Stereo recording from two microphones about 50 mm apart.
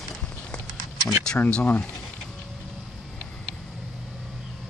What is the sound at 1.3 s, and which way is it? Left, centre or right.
Speech, left.